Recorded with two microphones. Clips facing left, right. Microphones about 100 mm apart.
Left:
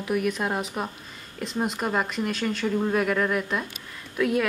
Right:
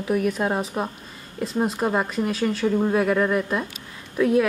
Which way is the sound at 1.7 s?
20° right (ahead or behind).